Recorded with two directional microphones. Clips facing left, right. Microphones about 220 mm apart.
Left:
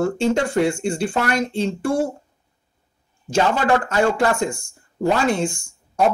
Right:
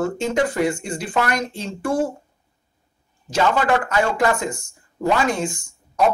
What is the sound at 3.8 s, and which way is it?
Speech, 30° left (ahead or behind).